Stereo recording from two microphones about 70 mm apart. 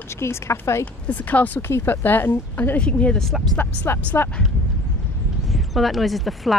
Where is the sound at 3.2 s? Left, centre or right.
Centre.